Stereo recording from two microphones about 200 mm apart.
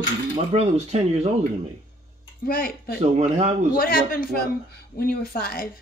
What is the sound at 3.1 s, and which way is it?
Speech, 35° right (ahead or behind).